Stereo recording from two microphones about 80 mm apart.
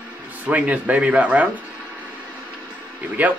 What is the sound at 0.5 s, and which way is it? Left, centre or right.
Speech, centre.